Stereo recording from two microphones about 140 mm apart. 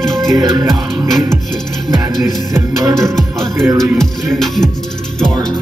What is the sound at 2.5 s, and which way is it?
Music, 20° right (ahead or behind).